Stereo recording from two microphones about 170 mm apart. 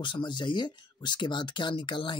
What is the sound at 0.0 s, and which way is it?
Speech, 25° left (ahead or behind).